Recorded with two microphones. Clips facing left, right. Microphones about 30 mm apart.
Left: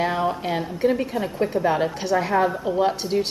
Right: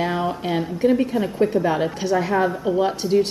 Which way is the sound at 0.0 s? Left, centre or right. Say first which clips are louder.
Even; centre.